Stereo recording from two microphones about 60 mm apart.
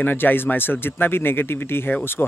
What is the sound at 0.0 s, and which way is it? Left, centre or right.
Speech, left.